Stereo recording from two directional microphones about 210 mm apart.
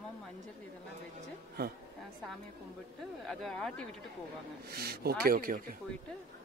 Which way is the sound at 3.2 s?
Centre (ahead or behind).